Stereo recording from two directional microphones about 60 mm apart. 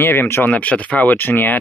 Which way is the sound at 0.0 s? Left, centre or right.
Left.